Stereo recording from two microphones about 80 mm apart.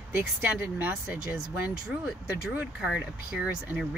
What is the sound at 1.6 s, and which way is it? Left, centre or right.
Speech, centre.